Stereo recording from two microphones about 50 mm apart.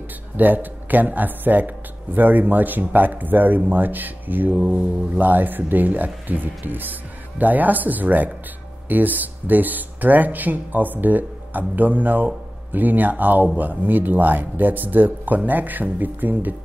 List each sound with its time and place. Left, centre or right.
0.4 s speech: right